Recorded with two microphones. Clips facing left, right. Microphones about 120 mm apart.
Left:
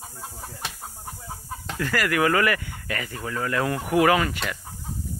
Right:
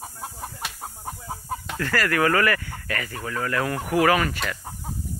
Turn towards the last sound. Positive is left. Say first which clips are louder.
# even
turn(degrees=20)  # may be behind; listen again after turning